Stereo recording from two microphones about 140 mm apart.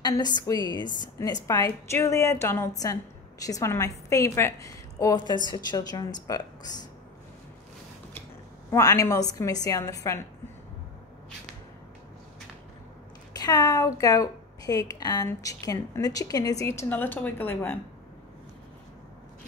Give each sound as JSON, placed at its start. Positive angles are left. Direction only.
{"t": 0.0, "sound": "a woman's voice", "side_deg": 30}
{"t": 8.6, "sound": "a woman's voice", "side_deg": 20}
{"t": 13.3, "sound": "a woman's voice", "side_deg": 30}